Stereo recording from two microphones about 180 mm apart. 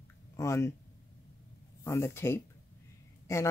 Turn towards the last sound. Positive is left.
turn(degrees=15)  # may be behind; listen again after turning